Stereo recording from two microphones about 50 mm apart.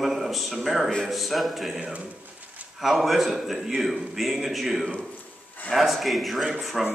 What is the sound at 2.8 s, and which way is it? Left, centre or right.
A man's voice, centre.